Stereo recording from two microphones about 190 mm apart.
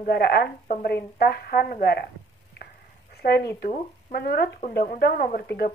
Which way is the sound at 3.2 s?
55° left (ahead or behind).